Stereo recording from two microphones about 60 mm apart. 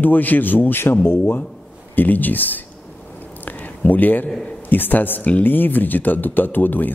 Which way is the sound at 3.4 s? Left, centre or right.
Left.